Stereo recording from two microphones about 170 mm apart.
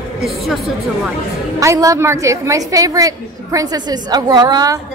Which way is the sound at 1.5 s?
20° right (ahead or behind).